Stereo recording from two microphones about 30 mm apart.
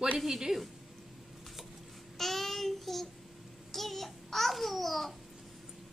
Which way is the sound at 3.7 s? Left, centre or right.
Centre.